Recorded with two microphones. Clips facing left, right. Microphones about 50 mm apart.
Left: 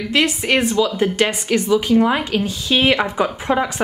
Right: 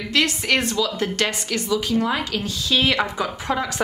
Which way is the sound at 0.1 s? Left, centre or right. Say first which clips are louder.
Left 3 dB; centre.